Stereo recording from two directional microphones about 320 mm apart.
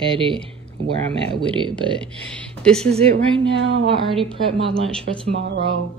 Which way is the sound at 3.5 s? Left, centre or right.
Right.